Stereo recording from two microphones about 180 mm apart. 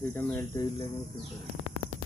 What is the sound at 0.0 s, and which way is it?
Speech, 10° left (ahead or behind).